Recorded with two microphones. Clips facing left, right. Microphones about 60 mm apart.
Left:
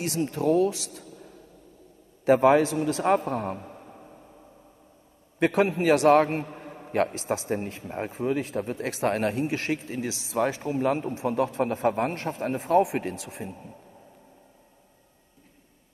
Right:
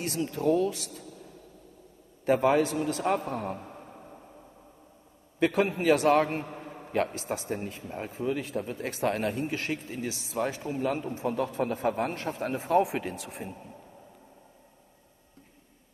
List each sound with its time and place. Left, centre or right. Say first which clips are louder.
0.0 s a man's voice: left 2 dB; left
2.2 s a man's voice: left 5 dB; left
3.3 s a man's voice: left 4 dB; left
3.8 s a sound: even; centre
5.6 s a man's voice: left 6 dB; left
6.0 s a man's voice: left 4 dB; left
6.6 s a sound: left 2 dB; left
7.0 s a man's voice: left 4 dB; left